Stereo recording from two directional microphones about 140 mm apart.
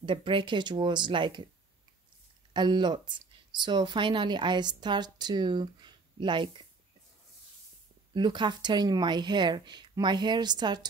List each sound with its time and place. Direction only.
0.0 s speech: 35° right (ahead or behind)
2.5 s speech: 30° right (ahead or behind)
8.1 s speech: 35° right (ahead or behind)